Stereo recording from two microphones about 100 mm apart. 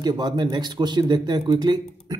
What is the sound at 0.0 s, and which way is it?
A man's voice, 45° right (ahead or behind).